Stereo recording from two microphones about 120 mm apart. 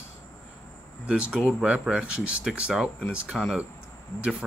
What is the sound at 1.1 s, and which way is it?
Speech, 5° right (ahead or behind).